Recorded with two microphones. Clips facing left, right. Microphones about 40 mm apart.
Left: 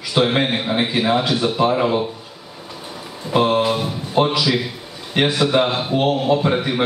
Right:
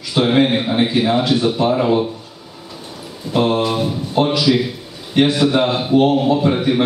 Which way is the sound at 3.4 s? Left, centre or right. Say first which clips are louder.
Even; centre.